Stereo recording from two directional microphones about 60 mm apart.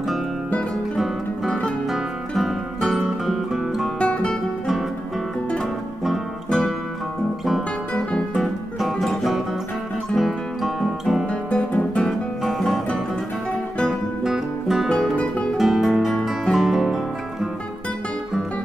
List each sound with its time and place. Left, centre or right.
1.9 s music: centre
4.0 s guitar: centre
6.0 s music: centre
8.4 s music: centre
11.2 s music: left
12.0 s music: centre
14.2 s music: centre
14.9 s guitar: centre
15.1 s guitar: centre
15.5 s music: centre